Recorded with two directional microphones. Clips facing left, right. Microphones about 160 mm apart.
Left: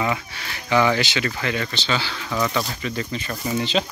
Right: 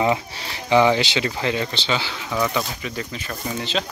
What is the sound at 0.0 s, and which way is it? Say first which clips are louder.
Speech: right 4 dB; 25° right (ahead or behind).